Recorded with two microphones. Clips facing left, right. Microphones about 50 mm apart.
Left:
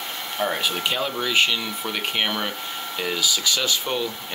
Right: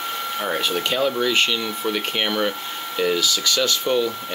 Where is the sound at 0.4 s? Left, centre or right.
Centre.